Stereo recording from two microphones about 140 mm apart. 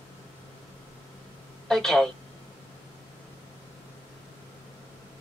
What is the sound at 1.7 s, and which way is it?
Speech, 5° left (ahead or behind).